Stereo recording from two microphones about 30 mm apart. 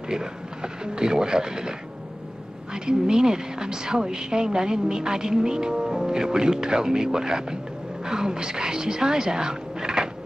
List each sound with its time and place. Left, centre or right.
0.1 s speech: right